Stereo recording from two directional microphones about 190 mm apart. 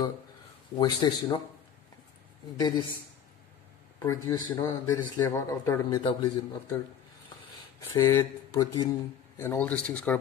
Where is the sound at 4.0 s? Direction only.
15° left (ahead or behind).